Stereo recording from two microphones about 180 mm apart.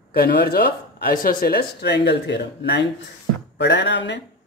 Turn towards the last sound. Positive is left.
turn(degrees=80)